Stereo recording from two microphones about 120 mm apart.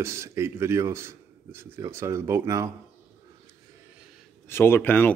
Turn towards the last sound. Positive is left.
turn(degrees=15)  # may be behind; listen again after turning